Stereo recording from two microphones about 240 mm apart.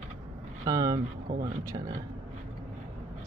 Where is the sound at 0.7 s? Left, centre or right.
Centre.